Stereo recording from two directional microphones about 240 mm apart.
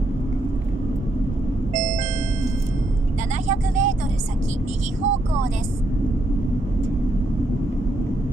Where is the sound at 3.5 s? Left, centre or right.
Right.